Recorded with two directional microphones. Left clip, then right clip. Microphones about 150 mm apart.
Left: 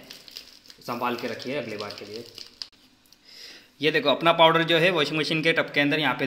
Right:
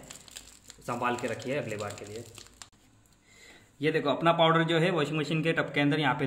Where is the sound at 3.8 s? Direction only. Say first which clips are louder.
Left 5 dB; 25° left (ahead or behind).